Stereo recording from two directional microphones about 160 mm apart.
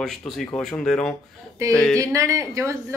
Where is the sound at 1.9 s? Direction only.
20° right (ahead or behind).